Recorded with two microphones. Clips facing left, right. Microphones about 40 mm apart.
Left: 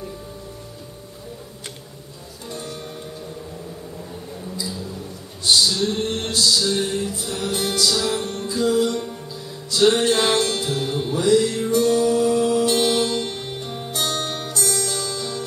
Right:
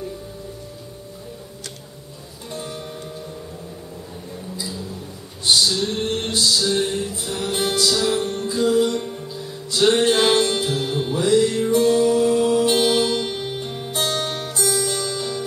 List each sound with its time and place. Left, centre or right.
2.5 s music: centre
5.5 s male singing: centre
6.0 s music: centre
7.5 s music: centre
7.8 s music: centre
13.9 s music: centre